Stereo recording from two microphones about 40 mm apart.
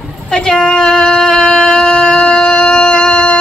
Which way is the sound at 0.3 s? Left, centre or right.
Left.